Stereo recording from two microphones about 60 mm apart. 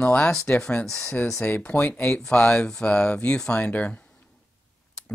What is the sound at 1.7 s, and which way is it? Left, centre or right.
Speech, left.